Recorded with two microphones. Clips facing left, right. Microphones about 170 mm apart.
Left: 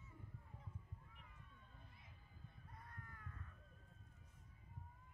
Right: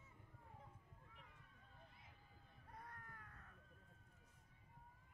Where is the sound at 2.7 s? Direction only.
65° right (ahead or behind).